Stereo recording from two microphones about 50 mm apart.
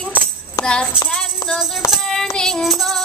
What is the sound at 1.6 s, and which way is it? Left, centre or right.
Music, centre.